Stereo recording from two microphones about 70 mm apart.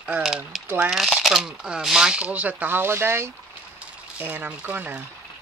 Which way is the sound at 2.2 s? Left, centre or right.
Right.